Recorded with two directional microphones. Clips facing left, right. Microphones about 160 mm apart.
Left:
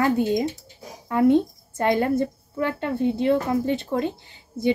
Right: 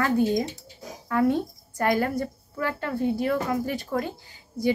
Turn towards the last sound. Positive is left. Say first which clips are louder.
# left 2 dB
turn(degrees=25)  # may be behind; listen again after turning